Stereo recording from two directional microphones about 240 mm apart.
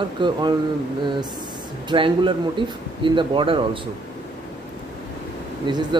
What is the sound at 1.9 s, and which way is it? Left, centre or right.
Speech, right.